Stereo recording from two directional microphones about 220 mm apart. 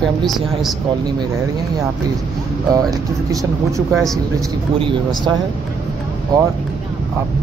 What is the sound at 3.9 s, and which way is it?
Speech, centre (ahead or behind).